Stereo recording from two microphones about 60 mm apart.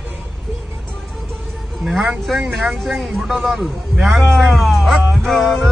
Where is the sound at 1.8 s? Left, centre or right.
Centre.